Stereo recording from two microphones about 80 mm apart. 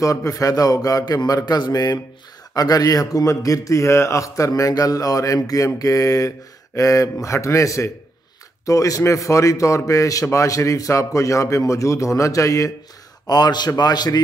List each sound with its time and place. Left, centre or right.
0.0 s a man's voice: left
13.3 s a man's voice: left